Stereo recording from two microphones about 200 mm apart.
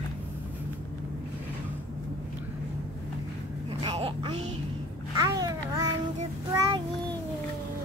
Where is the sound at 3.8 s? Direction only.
25° right (ahead or behind).